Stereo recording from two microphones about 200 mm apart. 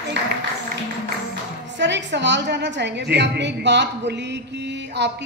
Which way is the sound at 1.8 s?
60° right (ahead or behind).